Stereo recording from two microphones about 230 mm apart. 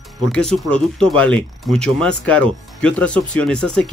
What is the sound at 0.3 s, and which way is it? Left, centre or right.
Speech, centre.